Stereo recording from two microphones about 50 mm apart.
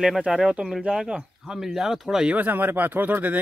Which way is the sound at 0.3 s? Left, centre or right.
Centre.